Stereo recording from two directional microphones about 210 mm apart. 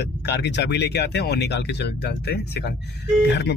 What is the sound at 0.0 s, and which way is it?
Speech, 50° left (ahead or behind).